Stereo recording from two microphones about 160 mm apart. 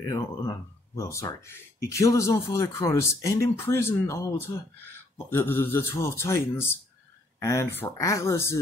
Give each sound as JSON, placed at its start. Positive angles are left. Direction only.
{"t": 0.0, "sound": "speech", "side_deg": 20}